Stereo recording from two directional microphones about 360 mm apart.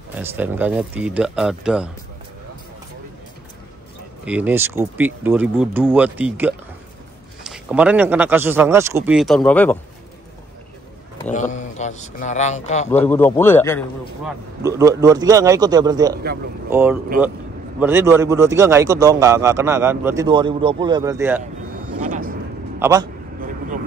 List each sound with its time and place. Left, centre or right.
0.1 s a man's voice: centre
4.2 s a man's voice: centre
11.2 s speech: centre
12.9 s a man's voice: centre
14.6 s a man's voice: centre
22.0 s a sound: right
22.8 s a man's voice: centre